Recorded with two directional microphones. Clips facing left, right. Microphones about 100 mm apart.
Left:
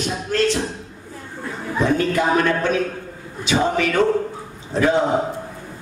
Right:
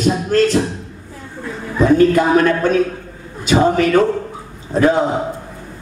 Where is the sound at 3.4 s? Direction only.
45° right (ahead or behind).